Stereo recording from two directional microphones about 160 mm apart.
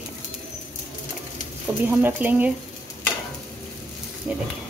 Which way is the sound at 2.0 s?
10° right (ahead or behind).